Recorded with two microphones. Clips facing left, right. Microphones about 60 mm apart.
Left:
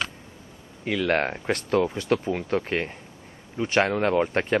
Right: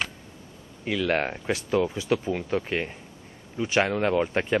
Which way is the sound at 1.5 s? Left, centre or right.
Left.